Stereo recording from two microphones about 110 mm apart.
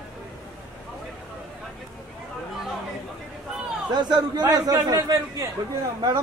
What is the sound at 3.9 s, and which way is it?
A man's voice, 40° right (ahead or behind).